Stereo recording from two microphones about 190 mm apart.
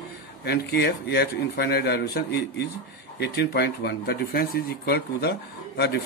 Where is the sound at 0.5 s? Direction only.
60° left (ahead or behind).